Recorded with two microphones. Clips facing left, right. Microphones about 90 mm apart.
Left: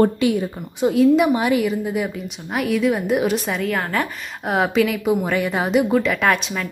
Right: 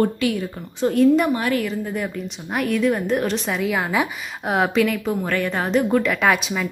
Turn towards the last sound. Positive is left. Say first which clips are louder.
# even
turn(degrees=-5)  # may be behind; listen again after turning